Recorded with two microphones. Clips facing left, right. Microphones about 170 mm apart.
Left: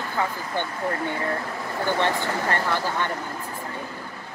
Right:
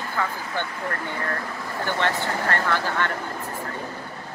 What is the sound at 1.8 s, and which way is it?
Speech, 15° left (ahead or behind).